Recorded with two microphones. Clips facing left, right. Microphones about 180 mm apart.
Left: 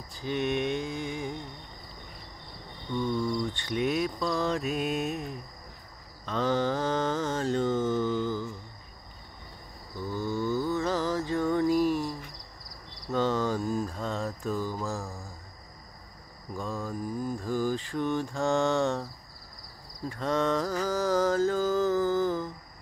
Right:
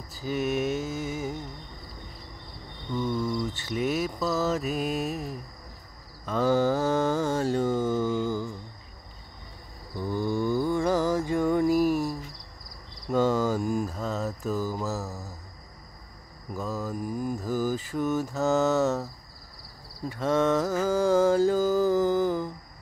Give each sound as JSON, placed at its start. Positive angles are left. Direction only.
{"t": 0.1, "sound": "mantra", "side_deg": -5}
{"t": 2.9, "sound": "cricket", "side_deg": -5}
{"t": 6.2, "sound": "mantra", "side_deg": -10}
{"t": 9.9, "sound": "mantra", "side_deg": -15}
{"t": 16.5, "sound": "cricket", "side_deg": -5}
{"t": 20.1, "sound": "a sound", "side_deg": -10}